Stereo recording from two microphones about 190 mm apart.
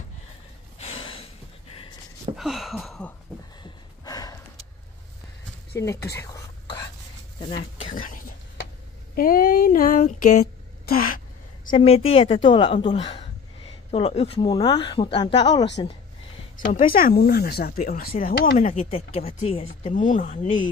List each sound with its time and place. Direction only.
0.7 s a sound: 30° left (ahead or behind)
2.3 s a sound: centre (ahead or behind)
3.6 s a sound: 20° left (ahead or behind)
5.8 s speech: 15° left (ahead or behind)
6.1 s whispering: 20° left (ahead or behind)
7.4 s speech: 25° left (ahead or behind)
7.9 s speech: 45° left (ahead or behind)
11.7 s speech: 30° left (ahead or behind)
16.6 s speech: 45° left (ahead or behind)
18.8 s speech: 30° left (ahead or behind)
19.8 s speech: 40° left (ahead or behind)